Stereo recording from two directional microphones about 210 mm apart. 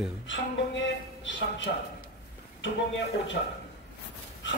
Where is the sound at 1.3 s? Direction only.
60° left (ahead or behind).